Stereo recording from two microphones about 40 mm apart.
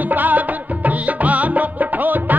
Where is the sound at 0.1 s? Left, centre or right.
Right.